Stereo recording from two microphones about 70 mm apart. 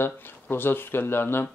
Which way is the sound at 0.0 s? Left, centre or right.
Left.